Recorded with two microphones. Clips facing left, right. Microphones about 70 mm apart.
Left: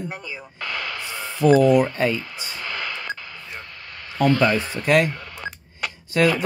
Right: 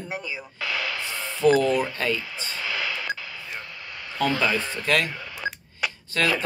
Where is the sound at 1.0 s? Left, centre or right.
Centre.